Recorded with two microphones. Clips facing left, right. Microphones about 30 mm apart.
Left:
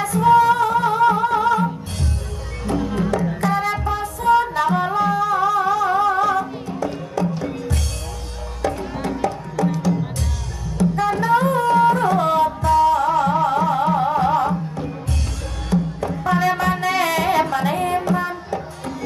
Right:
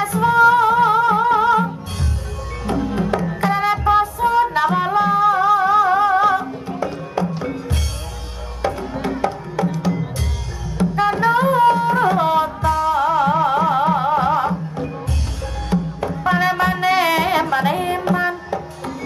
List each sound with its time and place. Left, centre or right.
0.0 s music: right
2.7 s music: centre
3.0 s music: right
4.6 s music: centre
8.6 s music: right
10.8 s music: right
11.9 s tabla: right
12.6 s music: centre
12.9 s music: centre
15.7 s music: right